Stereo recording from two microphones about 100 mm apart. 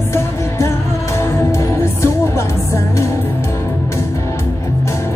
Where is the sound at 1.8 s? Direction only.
25° left (ahead or behind).